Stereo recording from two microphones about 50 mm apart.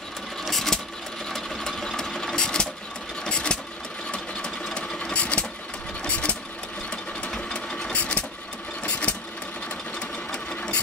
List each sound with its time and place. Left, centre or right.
0.5 s sewing machine: centre
3.3 s vehicle: centre
4.7 s sewing machine: left
6.0 s engine: left
7.2 s a sound: centre
7.9 s vehicle: left
9.9 s sewing machine: centre